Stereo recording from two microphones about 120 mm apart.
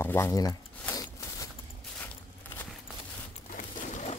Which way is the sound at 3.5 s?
85° left.